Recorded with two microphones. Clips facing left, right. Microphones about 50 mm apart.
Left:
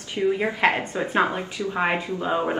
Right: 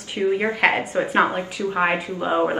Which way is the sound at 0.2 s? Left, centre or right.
Right.